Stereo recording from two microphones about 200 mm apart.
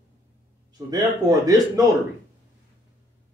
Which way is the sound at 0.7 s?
20° right (ahead or behind).